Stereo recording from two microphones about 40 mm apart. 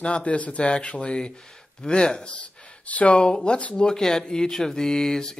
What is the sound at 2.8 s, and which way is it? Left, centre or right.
Speech, left.